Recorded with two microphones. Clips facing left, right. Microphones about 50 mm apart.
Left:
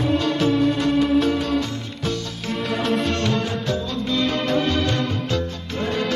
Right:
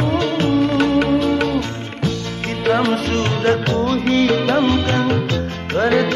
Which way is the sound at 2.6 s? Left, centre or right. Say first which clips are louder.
Right 7 dB; right.